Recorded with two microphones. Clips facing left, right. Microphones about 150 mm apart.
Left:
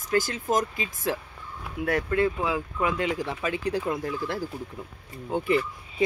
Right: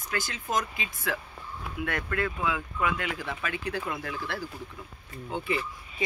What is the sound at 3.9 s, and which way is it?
Speech, 40° left (ahead or behind).